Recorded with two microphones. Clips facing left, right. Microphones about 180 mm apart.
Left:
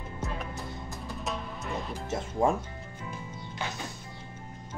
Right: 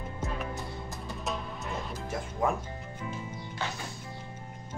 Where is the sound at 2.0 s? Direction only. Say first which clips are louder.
Left 4 dB; 25° left (ahead or behind).